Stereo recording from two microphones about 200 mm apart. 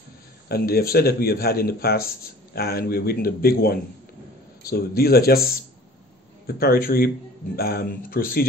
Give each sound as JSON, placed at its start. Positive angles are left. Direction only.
{"t": 0.5, "sound": "speech", "side_deg": 50}